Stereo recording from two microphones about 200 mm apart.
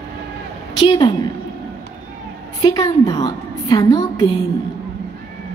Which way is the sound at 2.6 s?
20° left (ahead or behind).